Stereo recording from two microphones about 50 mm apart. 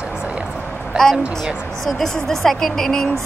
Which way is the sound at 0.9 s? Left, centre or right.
Centre.